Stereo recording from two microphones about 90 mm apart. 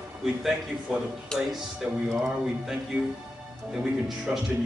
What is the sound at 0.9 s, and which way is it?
Speech, 5° right (ahead or behind).